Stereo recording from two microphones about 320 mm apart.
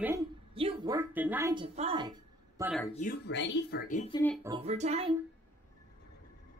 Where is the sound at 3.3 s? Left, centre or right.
Left.